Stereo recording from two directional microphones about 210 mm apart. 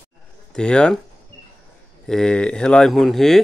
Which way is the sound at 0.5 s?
5° left (ahead or behind).